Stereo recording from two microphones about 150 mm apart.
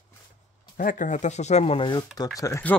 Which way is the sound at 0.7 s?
65° left (ahead or behind).